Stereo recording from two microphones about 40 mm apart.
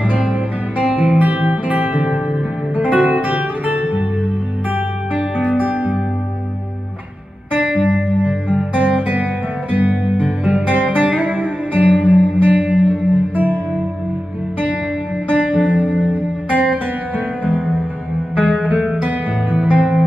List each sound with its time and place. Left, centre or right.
0.2 s music: right
7.5 s music: right
10.2 s music: right
10.7 s music: right
15.2 s music: right
18.5 s music: right